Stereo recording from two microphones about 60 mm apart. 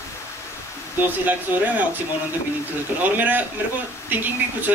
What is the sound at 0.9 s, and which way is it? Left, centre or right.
Speech, right.